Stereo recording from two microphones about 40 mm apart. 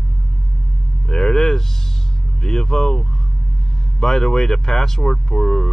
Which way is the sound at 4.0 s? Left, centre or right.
Centre.